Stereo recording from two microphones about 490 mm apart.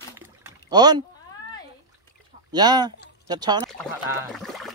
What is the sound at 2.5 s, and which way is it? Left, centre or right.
Speech, centre.